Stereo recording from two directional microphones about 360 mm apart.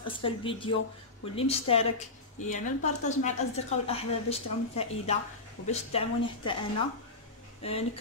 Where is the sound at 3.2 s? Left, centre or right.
Centre.